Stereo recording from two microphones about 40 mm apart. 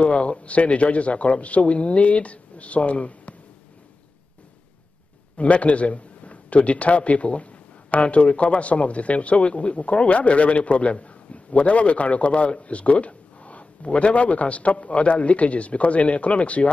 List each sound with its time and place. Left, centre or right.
0.0 s a man's voice: left
5.4 s a man's voice: left